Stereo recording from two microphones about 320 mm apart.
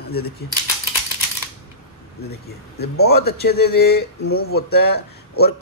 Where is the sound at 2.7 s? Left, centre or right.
Left.